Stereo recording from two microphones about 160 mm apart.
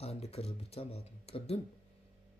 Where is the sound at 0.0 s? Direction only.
40° left (ahead or behind).